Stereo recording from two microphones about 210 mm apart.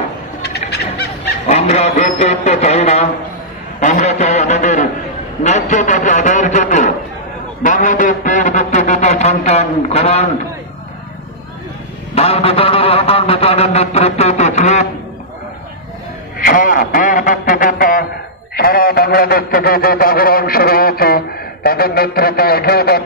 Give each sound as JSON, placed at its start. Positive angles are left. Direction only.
{"t": 1.5, "sound": "a man's voice", "side_deg": 30}
{"t": 12.2, "sound": "a sound", "side_deg": 30}
{"t": 16.3, "sound": "a man's voice", "side_deg": 40}